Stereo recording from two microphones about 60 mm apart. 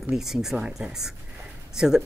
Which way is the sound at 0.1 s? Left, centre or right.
Centre.